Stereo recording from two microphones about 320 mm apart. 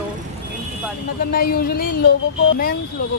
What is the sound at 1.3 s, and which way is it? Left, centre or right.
Speech, left.